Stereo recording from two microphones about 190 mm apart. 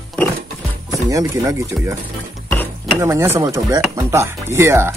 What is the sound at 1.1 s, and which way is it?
Speech, 20° right (ahead or behind).